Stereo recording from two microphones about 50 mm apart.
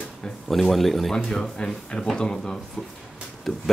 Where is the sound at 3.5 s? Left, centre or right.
Centre.